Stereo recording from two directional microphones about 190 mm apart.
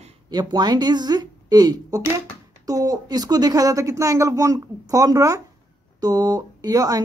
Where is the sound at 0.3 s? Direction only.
20° right (ahead or behind).